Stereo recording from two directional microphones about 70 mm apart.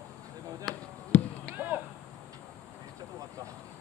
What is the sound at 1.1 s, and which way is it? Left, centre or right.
Chop, left.